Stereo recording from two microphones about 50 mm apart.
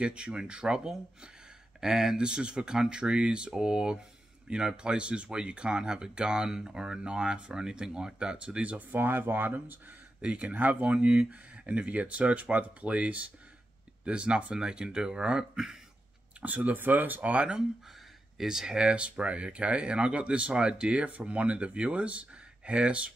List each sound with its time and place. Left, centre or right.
0.0 s speech: right
8.9 s speech: right
10.2 s speech: right
16.3 s speech: right
18.4 s speech: centre